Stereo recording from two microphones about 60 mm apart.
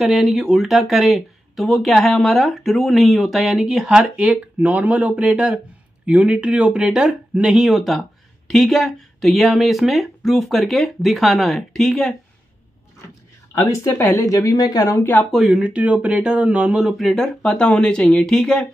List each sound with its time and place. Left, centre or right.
0.0 s speech: centre
4.6 s speech: right
5.3 s speech: centre
13.6 s speech: left
14.2 s speech: left
15.5 s speech: centre
16.8 s speech: centre